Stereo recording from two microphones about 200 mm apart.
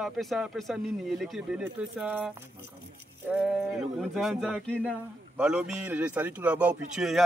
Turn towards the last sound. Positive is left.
turn(degrees=-5)  # may be behind; listen again after turning